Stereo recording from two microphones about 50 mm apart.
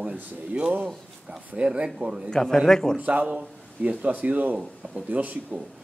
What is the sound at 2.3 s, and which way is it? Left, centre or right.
Speech, centre.